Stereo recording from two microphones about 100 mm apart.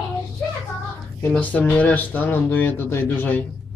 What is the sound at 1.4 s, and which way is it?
Speech, 15° left (ahead or behind).